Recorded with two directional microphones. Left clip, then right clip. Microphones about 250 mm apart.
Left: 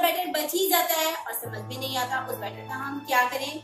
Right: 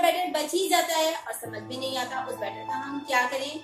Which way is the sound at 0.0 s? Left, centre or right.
Centre.